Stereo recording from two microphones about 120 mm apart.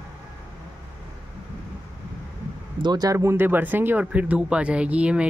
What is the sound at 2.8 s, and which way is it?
Speech, 35° right (ahead or behind).